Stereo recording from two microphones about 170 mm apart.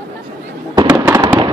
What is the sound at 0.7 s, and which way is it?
Fireworks, 20° right (ahead or behind).